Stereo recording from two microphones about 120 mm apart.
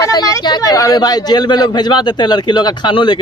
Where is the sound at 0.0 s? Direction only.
30° left (ahead or behind).